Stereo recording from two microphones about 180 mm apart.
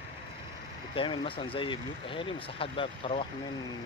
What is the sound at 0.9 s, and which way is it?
Speech, 30° left (ahead or behind).